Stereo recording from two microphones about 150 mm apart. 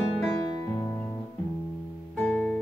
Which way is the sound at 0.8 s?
20° left (ahead or behind).